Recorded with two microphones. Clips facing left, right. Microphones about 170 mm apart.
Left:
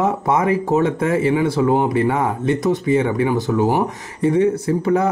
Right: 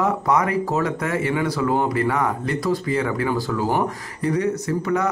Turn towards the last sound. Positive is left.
turn(degrees=30)  # may be behind; listen again after turning